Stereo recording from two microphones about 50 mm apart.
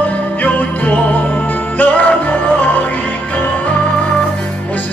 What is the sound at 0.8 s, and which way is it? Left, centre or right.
Music, left.